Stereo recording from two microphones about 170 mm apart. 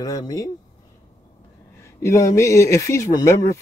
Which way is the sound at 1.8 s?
15° left (ahead or behind).